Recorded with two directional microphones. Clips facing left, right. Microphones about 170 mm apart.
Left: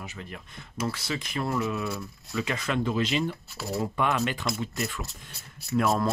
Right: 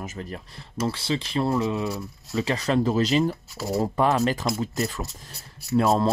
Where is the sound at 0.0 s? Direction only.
40° right (ahead or behind).